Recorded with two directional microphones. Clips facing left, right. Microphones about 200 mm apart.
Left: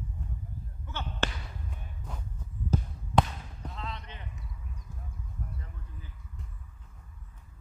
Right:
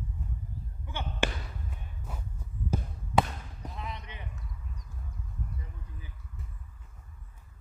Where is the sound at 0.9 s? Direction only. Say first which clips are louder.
Right 2 dB; 15° right (ahead or behind).